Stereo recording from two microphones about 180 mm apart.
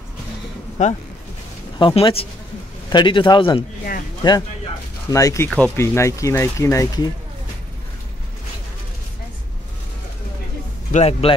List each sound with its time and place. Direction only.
0.8 s speech: 40° left (ahead or behind)
1.8 s a man's voice: 30° left (ahead or behind)
10.9 s speech: 35° left (ahead or behind)